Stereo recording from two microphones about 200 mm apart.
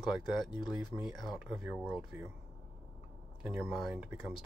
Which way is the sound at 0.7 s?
5° right (ahead or behind).